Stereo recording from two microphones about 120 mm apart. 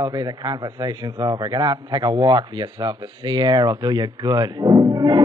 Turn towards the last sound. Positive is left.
turn(degrees=-35)  # may be behind; listen again after turning